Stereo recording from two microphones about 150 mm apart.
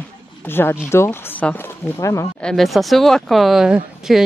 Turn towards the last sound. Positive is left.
turn(degrees=-5)  # may be behind; listen again after turning